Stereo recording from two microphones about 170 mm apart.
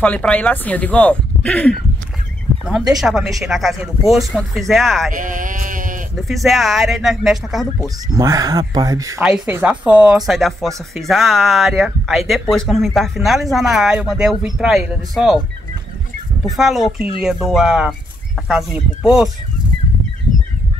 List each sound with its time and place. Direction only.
0.0 s speech: 5° left (ahead or behind)
3.0 s speech: centre (ahead or behind)
5.1 s a sound: 50° right (ahead or behind)
6.1 s speech: centre (ahead or behind)
8.1 s speech: 20° right (ahead or behind)
9.2 s speech: 10° right (ahead or behind)
16.4 s speech: centre (ahead or behind)